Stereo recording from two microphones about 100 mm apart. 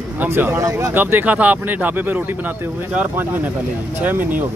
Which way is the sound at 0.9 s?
15° right (ahead or behind).